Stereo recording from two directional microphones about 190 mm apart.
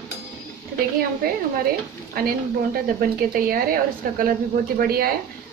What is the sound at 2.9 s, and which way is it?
A woman's voice, 50° right (ahead or behind).